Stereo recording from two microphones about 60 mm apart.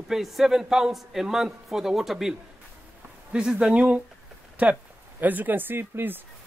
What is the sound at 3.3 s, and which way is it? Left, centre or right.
A man's voice, centre.